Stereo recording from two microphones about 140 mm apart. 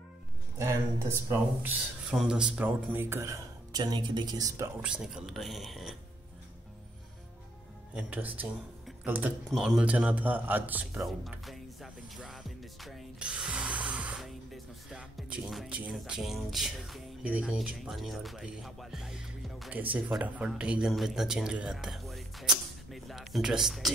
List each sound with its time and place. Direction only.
0.6 s speech: 20° right (ahead or behind)
2.0 s speech: 5° right (ahead or behind); by 4.6 s 25° right (ahead or behind)
4.8 s speech: 5° right (ahead or behind)
7.9 s a man's voice: 10° right (ahead or behind)
11.1 s music: centre (ahead or behind)
13.9 s speech: 5° right (ahead or behind)